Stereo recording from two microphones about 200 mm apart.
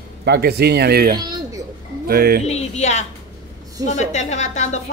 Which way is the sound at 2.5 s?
35° left (ahead or behind).